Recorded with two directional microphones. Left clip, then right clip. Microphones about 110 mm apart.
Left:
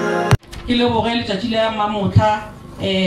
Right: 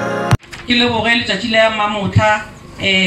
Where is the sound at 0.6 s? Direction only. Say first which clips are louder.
Right 4 dB; 35° left (ahead or behind).